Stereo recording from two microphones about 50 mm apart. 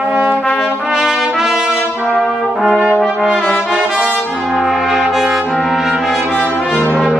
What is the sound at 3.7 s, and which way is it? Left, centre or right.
Brass instrument, centre.